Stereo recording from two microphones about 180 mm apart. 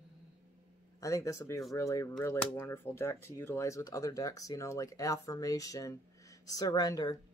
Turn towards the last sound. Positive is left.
turn(degrees=20)  # may be behind; listen again after turning